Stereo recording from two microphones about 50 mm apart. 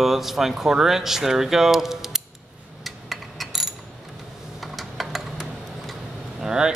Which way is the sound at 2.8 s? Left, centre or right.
Centre.